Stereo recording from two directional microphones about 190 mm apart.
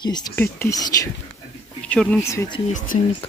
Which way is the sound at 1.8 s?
5° left (ahead or behind).